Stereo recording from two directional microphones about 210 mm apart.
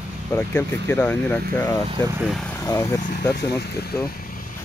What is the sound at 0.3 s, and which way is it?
Speech, 10° left (ahead or behind).